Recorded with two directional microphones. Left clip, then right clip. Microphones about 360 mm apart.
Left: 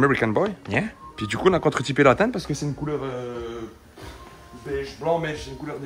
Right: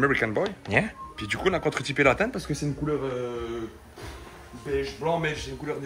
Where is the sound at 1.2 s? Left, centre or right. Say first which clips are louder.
Left 5 dB; left.